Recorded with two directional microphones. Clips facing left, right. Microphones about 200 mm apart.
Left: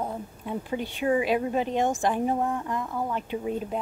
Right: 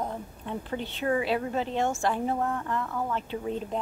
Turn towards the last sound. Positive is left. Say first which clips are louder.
# left 2 dB
turn(degrees=10)  # may be behind; listen again after turning